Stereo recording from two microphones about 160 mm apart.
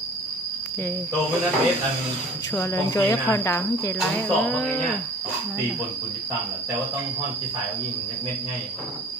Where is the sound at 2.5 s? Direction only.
15° left (ahead or behind).